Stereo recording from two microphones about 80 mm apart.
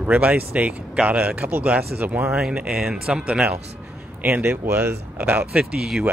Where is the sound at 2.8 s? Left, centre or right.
Centre.